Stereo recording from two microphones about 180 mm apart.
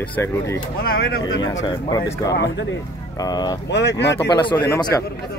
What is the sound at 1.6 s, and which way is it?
Speech, 20° left (ahead or behind).